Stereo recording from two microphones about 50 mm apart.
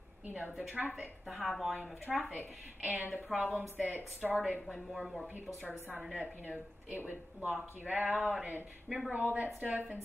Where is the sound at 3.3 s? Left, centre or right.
Centre.